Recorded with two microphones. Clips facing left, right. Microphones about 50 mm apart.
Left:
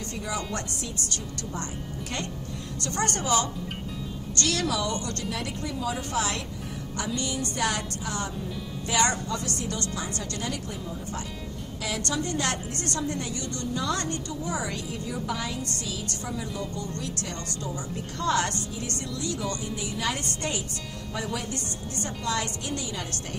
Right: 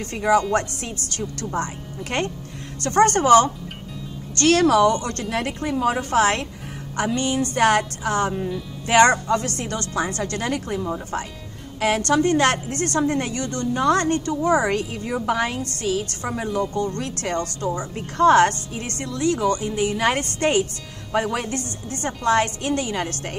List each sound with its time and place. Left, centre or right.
0.0 s a woman's voice: right
12.1 s a woman's voice: right
14.7 s a woman's voice: right